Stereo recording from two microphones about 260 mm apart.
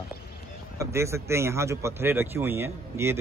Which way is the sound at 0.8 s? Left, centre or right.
Centre.